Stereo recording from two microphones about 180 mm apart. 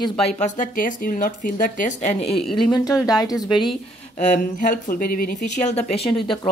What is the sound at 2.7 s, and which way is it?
Speech, 20° left (ahead or behind).